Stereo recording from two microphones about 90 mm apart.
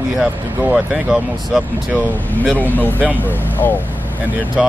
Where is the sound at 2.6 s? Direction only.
20° left (ahead or behind).